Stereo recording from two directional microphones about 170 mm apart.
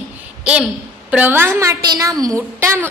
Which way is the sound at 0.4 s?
5° right (ahead or behind).